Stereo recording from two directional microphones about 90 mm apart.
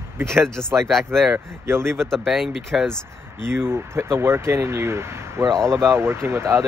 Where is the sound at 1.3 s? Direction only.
30° right (ahead or behind).